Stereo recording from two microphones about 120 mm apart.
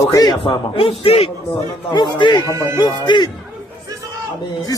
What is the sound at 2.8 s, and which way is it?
Speech, 40° left (ahead or behind).